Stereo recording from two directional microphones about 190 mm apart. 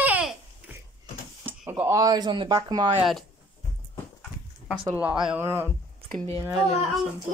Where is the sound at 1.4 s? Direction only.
10° right (ahead or behind).